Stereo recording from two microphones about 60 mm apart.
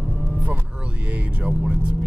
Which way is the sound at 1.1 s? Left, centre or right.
Centre.